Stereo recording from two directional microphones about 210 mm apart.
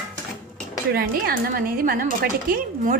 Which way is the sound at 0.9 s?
45° right (ahead or behind).